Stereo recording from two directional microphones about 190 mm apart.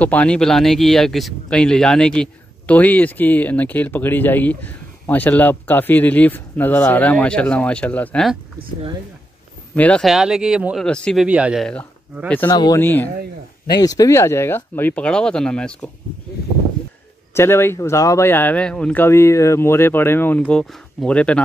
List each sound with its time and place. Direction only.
0.0 s speech: 5° left (ahead or behind)
9.8 s speech: 5° left (ahead or behind)
11.2 s speech: 5° right (ahead or behind)
12.4 s speech: 20° left (ahead or behind); by 15.8 s 5° left (ahead or behind)
17.3 s speech: 15° left (ahead or behind)